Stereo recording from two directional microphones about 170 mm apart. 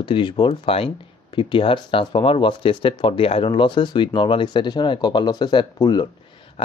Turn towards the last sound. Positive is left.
turn(degrees=25)  # may be behind; listen again after turning